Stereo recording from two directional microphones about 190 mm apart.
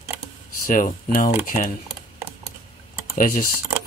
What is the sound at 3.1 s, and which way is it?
Speech, 50° left (ahead or behind).